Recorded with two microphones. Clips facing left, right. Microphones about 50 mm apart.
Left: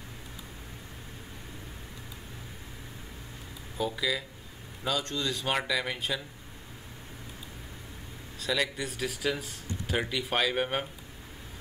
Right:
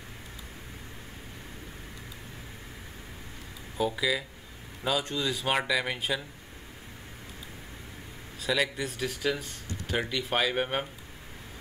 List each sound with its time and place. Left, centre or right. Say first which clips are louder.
3.7 s speech: right 2 dB; centre
8.4 s speech: right 2 dB; centre